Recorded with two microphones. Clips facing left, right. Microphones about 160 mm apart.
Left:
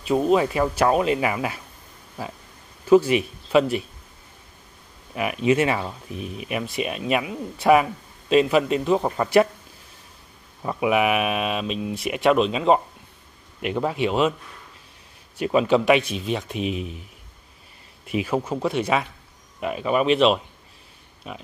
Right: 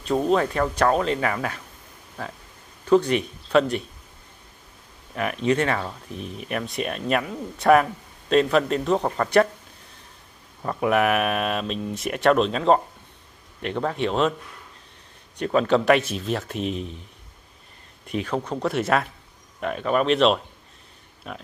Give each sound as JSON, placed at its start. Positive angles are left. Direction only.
{"t": 0.0, "sound": "speech", "side_deg": 5}
{"t": 5.1, "sound": "speech", "side_deg": 10}
{"t": 10.6, "sound": "speech", "side_deg": 5}
{"t": 15.3, "sound": "speech", "side_deg": 5}
{"t": 18.0, "sound": "speech", "side_deg": 5}